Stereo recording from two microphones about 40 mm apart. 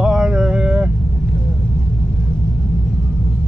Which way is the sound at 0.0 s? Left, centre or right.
Right.